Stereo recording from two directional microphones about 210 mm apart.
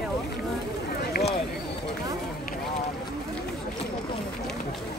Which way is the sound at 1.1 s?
45° left (ahead or behind).